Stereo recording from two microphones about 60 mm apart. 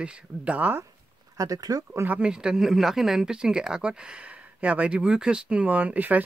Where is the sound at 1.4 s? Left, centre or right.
Right.